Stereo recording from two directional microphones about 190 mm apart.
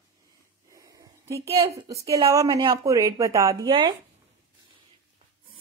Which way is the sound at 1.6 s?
15° right (ahead or behind).